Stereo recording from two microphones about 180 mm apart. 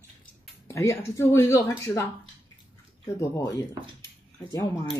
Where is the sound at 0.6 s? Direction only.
15° left (ahead or behind).